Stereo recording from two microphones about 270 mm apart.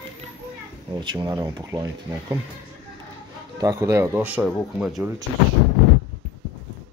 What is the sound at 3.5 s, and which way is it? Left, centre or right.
Speech, centre.